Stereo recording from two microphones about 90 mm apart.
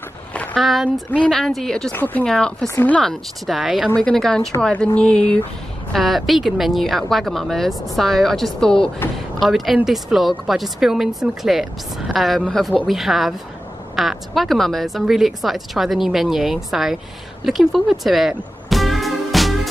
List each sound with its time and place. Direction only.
0.3 s a sound: 15° left (ahead or behind)
0.6 s a woman's voice: centre (ahead or behind)
1.9 s speech: 20° left (ahead or behind)
2.2 s speech: 5° left (ahead or behind)
3.1 s a woman's voice: centre (ahead or behind)
4.0 s a woman's voice: 10° left (ahead or behind)
18.7 s music: centre (ahead or behind)